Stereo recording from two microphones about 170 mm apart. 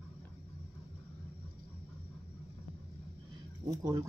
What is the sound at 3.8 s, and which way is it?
Speech, 25° right (ahead or behind).